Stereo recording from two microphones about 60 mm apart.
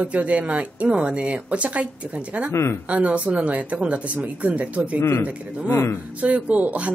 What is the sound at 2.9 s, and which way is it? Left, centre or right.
Speech, right.